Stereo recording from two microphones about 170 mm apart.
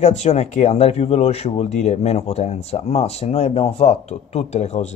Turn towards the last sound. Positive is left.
turn(degrees=40)  # may be behind; listen again after turning